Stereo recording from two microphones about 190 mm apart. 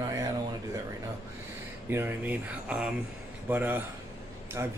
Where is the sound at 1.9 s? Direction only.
10° right (ahead or behind).